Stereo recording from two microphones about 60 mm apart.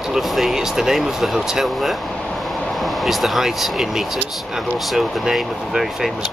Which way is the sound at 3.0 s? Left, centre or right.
Centre.